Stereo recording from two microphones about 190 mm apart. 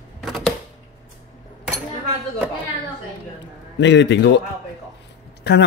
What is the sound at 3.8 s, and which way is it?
Speech, 70° left (ahead or behind).